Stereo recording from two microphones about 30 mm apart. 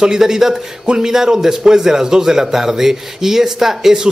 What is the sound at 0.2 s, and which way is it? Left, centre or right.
A man's voice, centre.